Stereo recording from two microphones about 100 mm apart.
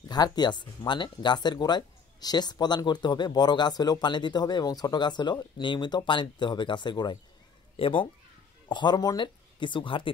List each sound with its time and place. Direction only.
0.1 s speech: 45° left (ahead or behind)
7.7 s speech: 60° left (ahead or behind)
8.6 s speech: 50° left (ahead or behind)